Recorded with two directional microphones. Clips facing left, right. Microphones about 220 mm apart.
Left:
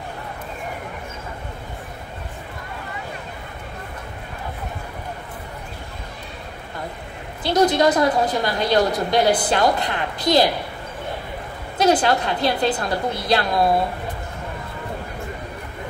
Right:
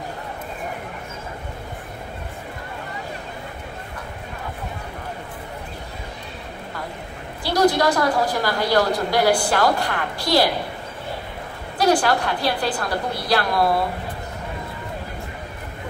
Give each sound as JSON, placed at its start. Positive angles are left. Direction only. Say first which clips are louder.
{"t": 7.4, "sound": "a woman's voice", "louder": "left 1 dB", "side_deg": 20}
{"t": 11.8, "sound": "a woman's voice", "louder": "left 1 dB", "side_deg": 20}